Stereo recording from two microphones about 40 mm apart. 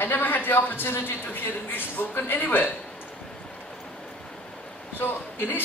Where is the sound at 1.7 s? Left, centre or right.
Left.